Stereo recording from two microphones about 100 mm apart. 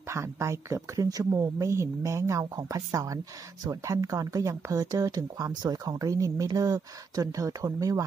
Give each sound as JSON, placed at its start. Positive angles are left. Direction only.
{"t": 0.1, "sound": "speech", "side_deg": -30}